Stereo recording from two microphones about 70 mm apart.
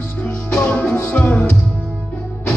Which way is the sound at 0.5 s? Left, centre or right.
Centre.